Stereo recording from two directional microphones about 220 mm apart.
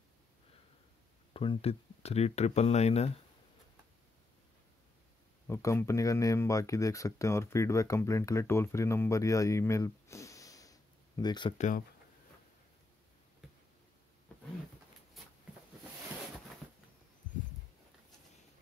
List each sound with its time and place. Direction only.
1.3 s speech: 25° left (ahead or behind)
5.5 s speech: 15° left (ahead or behind)